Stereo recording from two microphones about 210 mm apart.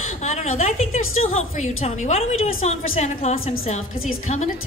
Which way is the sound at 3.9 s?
75° left (ahead or behind).